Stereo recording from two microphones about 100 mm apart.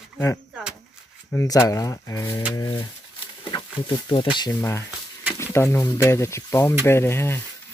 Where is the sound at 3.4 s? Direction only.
50° left (ahead or behind).